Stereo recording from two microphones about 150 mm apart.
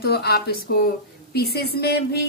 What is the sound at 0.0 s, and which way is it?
Speech, 90° left.